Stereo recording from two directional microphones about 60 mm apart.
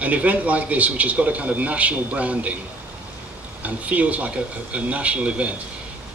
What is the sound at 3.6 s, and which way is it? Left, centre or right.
A man's voice, right.